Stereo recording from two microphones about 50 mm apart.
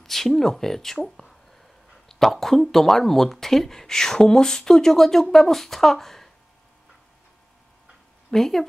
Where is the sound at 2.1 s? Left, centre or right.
Centre.